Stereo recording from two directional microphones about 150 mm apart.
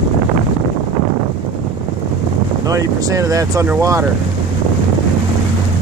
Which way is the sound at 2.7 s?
20° right (ahead or behind).